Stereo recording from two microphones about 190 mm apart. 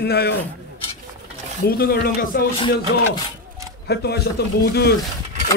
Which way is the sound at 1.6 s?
55° left (ahead or behind).